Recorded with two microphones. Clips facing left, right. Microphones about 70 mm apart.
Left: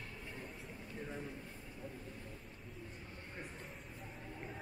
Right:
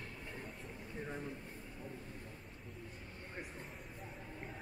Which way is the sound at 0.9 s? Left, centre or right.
Centre.